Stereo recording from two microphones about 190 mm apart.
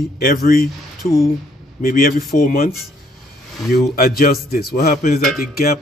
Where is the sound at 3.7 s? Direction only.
50° left (ahead or behind).